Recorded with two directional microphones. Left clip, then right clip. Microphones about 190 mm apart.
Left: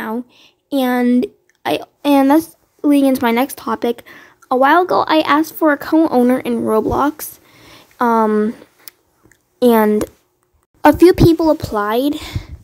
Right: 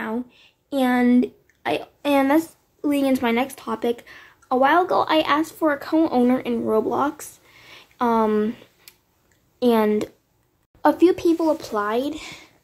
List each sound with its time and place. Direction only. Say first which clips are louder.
0.0 s a woman's voice: left 4 dB; 35° left (ahead or behind)